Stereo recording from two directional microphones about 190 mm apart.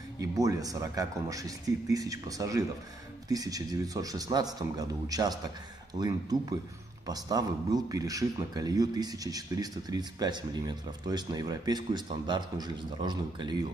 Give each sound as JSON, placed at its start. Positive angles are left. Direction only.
{"t": 0.2, "sound": "speech", "side_deg": -20}